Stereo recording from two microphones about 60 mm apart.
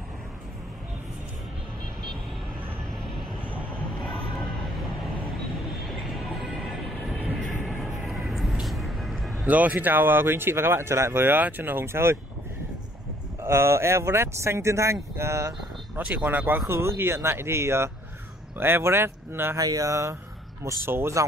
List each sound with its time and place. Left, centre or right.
5.9 s train: centre
7.3 s vehicle: centre
9.5 s speech: right
13.4 s speech: right
16.0 s speech: right
16.7 s speech: right
19.5 s speech: right
20.8 s speech: right